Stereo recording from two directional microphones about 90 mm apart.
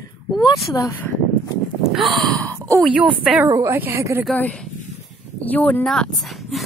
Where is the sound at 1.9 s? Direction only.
Centre (ahead or behind).